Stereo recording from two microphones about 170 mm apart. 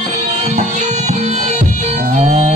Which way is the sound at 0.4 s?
45° right (ahead or behind).